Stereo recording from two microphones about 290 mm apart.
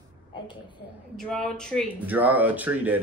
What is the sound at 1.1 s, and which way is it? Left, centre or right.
Speech, centre.